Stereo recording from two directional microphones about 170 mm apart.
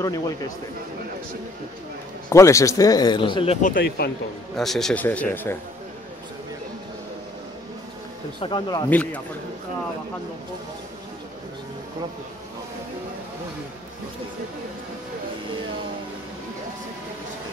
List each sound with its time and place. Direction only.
0.0 s speech: 20° left (ahead or behind)
2.2 s speech: 15° left (ahead or behind)
3.6 s speech: 55° left (ahead or behind)
4.6 s speech: centre (ahead or behind)
8.4 s speech: 30° left (ahead or behind)
8.8 s speech: 10° left (ahead or behind)